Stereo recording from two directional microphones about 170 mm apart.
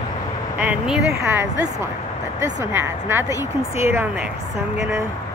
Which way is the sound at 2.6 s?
15° right (ahead or behind).